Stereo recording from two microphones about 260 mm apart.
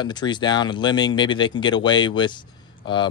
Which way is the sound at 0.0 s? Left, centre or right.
Centre.